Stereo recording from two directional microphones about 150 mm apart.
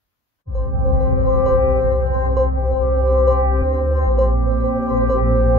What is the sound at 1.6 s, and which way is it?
Music, 30° right (ahead or behind).